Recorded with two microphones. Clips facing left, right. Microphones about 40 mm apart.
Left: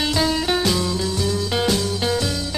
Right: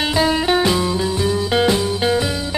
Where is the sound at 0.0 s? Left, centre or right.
Right.